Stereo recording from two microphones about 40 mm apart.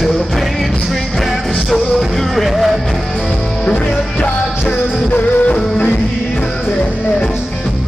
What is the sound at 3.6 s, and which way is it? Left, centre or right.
Music, left.